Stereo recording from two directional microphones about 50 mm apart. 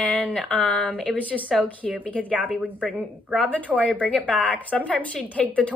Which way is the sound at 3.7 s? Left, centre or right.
Centre.